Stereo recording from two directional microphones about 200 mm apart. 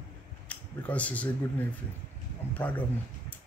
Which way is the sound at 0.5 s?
5° left (ahead or behind).